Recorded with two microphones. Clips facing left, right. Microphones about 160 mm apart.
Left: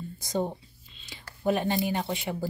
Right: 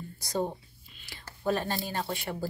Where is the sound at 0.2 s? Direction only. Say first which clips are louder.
Left 1 dB; 20° left (ahead or behind).